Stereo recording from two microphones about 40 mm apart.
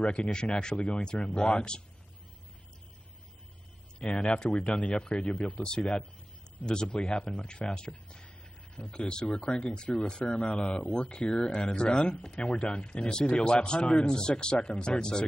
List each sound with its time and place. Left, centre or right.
0.0 s speech: left
4.0 s speech: left
8.9 s speech: left